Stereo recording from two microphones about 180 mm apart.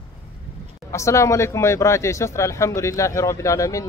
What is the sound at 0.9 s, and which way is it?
Speech, 15° left (ahead or behind).